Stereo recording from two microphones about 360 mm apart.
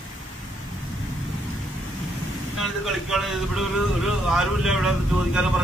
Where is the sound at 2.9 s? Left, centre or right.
Centre.